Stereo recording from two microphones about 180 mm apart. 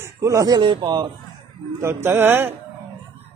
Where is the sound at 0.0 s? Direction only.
15° right (ahead or behind).